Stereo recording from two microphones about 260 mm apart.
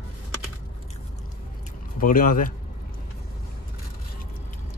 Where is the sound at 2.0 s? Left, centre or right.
Left.